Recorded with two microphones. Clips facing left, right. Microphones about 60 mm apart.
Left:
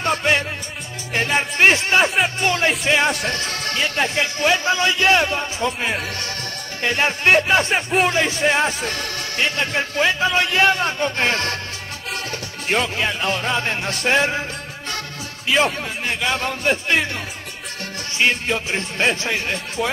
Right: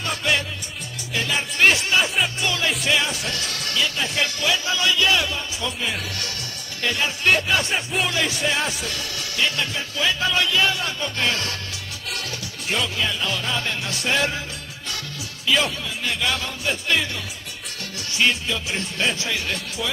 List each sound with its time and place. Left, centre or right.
0.0 s music: left
1.1 s a man's voice: left
3.1 s speech: left
3.3 s a man's voice: left
15.4 s a man's voice: left
18.3 s a man's voice: left